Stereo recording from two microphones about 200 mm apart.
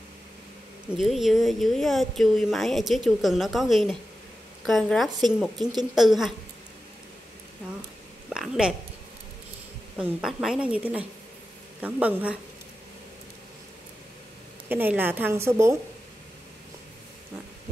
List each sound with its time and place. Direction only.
0.9 s speech: centre (ahead or behind)
5.6 s speech: 20° right (ahead or behind)
5.9 s speech: centre (ahead or behind)
8.3 s a sound: 5° right (ahead or behind)
9.9 s a woman's voice: 5° right (ahead or behind)
14.7 s a woman's voice: 10° right (ahead or behind)